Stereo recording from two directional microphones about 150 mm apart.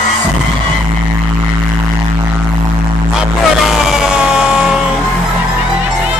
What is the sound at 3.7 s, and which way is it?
Fire engine, 5° right (ahead or behind).